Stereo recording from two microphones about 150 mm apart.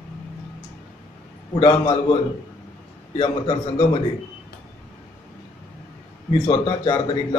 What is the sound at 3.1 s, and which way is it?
Speech, 40° left (ahead or behind).